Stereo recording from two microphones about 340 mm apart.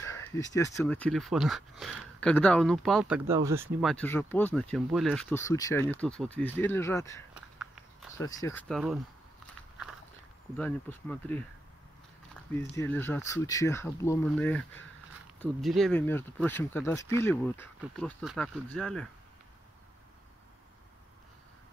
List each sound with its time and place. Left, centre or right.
0.0 s a sound: centre
0.6 s speech: centre
3.9 s speech: centre
7.3 s a sound: centre
8.2 s speech: centre
10.6 s speech: centre
12.5 s speech: centre